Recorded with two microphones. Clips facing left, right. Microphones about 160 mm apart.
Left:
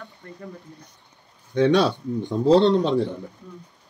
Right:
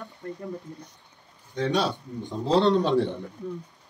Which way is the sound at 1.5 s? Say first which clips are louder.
Left 7 dB; 75° left (ahead or behind).